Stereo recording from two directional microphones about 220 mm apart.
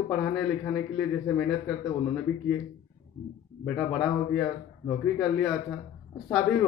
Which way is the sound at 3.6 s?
5° left (ahead or behind).